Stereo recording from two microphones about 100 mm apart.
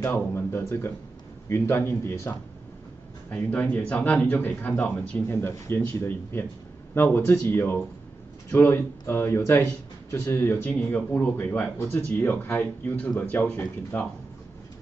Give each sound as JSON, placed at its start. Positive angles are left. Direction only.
{"t": 0.0, "sound": "speech", "side_deg": 25}
{"t": 5.4, "sound": "speech", "side_deg": 25}